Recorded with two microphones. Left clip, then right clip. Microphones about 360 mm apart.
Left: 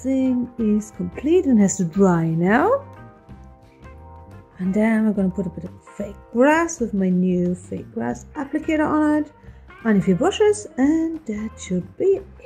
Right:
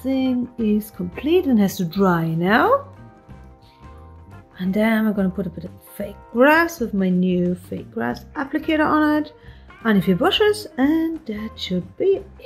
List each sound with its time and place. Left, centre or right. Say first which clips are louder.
0.0 s speech: even; centre
4.6 s speech: right 1 dB; centre